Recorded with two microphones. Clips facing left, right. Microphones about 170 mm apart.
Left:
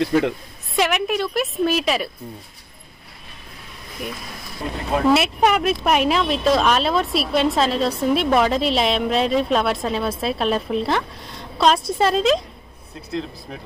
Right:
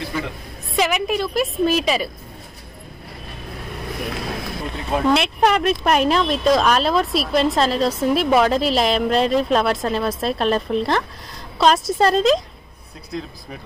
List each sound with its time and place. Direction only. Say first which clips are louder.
0.7 s speech: even; centre (ahead or behind)
3.7 s vehicle: right 4 dB; 70° right (ahead or behind)
4.9 s speech: left 1 dB; 5° left (ahead or behind)